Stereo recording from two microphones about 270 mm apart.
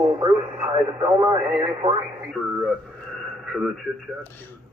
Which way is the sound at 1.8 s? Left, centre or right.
Right.